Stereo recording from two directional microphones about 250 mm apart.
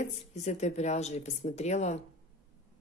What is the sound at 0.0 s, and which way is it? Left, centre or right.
Speech, left.